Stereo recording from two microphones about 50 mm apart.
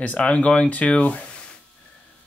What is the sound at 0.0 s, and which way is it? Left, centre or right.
Speech, left.